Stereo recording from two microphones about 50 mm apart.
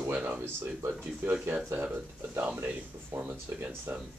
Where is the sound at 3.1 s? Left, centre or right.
Right.